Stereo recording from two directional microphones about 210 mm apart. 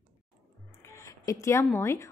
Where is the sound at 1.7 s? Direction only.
15° left (ahead or behind).